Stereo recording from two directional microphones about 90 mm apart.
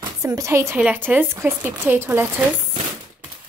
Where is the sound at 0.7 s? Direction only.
20° right (ahead or behind).